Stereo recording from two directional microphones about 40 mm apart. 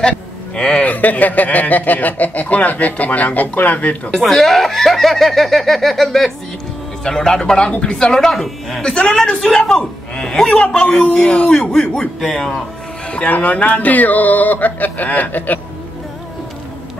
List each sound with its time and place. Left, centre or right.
0.6 s speech: centre
0.8 s speech: left
4.1 s speech: centre
8.8 s speech: left
12.2 s speech: centre
13.3 s speech: left